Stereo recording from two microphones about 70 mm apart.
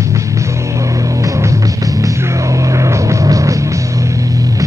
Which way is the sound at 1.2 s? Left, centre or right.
Right.